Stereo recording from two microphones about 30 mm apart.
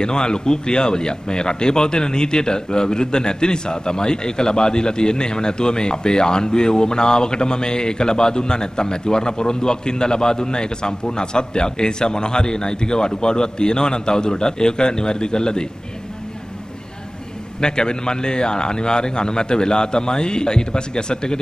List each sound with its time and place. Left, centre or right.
0.0 s speech: left
17.6 s speech: left